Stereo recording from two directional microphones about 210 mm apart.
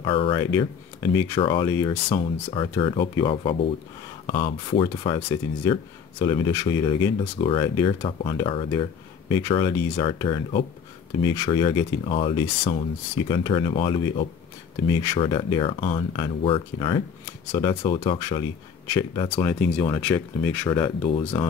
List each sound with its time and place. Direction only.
0.0 s speech: 25° left (ahead or behind)
19.4 s speech: 15° left (ahead or behind)
21.0 s speech: 25° left (ahead or behind)